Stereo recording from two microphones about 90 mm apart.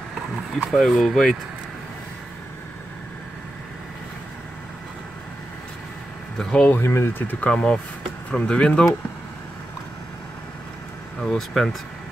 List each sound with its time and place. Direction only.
0.7 s speech: centre (ahead or behind)
6.3 s speech: 5° left (ahead or behind)
6.7 s speech: 30° left (ahead or behind); by 8.8 s 10° left (ahead or behind)
11.2 s speech: 5° left (ahead or behind)